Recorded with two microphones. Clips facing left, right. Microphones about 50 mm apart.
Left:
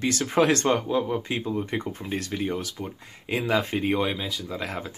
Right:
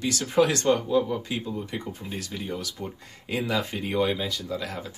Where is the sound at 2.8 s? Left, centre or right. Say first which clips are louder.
Left 1 dB; centre.